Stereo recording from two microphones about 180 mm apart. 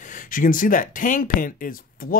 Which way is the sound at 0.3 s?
50° left (ahead or behind).